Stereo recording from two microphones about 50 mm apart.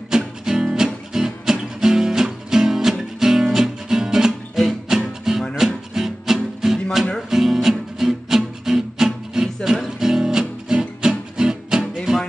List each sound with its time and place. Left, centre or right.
0.1 s music: centre